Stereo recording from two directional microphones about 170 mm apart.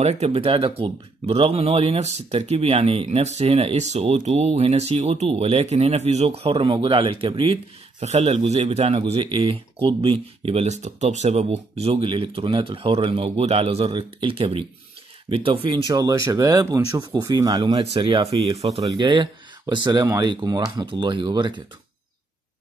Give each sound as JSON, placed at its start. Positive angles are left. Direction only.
{"t": 0.0, "sound": "speech", "side_deg": -40}